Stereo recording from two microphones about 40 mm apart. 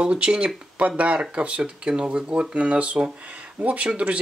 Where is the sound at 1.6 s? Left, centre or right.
Centre.